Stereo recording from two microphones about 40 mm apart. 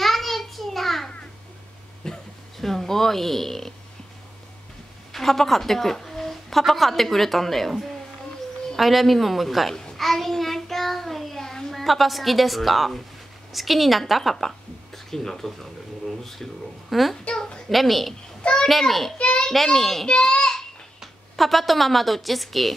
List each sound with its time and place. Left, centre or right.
0.0 s a sound: centre
5.1 s a woman's voice: centre
9.9 s child singing: centre
13.5 s speech: centre
18.4 s a child's voice: left
18.7 s speech: centre
19.1 s a child's voice: left
19.5 s speech: centre
20.1 s a child's voice: left
21.0 s a woman's voice: centre